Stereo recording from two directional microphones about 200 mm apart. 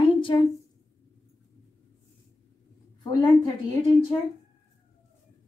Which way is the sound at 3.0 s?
20° left (ahead or behind).